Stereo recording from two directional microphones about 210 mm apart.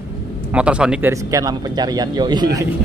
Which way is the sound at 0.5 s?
5° right (ahead or behind).